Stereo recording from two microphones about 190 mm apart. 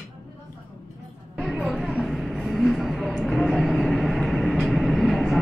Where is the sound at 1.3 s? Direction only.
Centre (ahead or behind).